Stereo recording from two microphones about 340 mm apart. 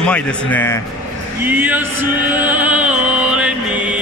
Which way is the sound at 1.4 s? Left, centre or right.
Centre.